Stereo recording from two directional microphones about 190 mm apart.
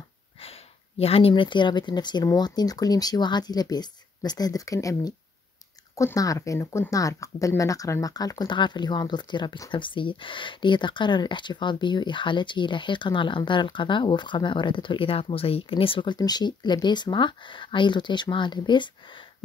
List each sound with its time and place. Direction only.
0.4 s speech: 30° left (ahead or behind)